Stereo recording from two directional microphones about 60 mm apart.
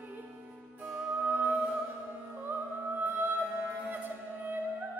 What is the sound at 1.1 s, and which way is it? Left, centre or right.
Music, right.